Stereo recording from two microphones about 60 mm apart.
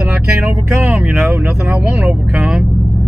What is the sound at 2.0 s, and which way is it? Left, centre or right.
Speech, centre.